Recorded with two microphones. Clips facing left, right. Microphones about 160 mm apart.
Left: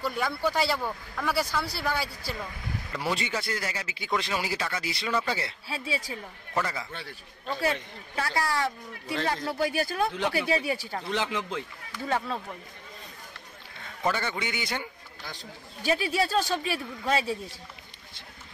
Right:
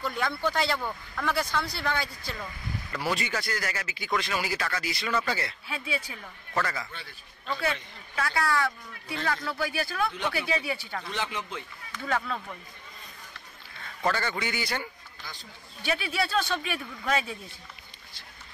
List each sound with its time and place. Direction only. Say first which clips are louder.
0.0 s speech: left 1 dB; 10° left (ahead or behind)
2.9 s speech: even; 25° left (ahead or behind)
11.1 s speech: left 5 dB; 90° left
12.1 s speech: left 1 dB; 25° left (ahead or behind)
14.0 s speech: even; 10° left (ahead or behind)
15.8 s speech: left 3 dB; 40° left (ahead or behind)